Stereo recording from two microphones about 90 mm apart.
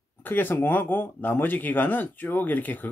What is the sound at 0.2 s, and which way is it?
Speech, 20° left (ahead or behind).